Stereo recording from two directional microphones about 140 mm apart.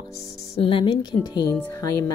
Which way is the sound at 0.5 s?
40° left (ahead or behind).